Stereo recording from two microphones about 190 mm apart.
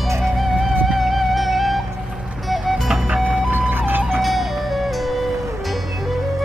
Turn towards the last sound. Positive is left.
turn(degrees=0)  # may be behind; listen again after turning